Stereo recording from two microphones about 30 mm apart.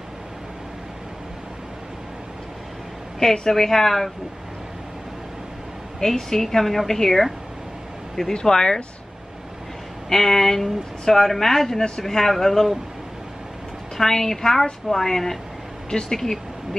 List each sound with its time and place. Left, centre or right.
3.2 s a woman's voice: centre
6.0 s a woman's voice: centre
8.3 s speech: left
10.0 s a woman's voice: centre
13.9 s a woman's voice: centre
15.9 s speech: left